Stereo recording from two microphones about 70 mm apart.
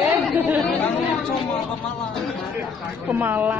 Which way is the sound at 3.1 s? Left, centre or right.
Right.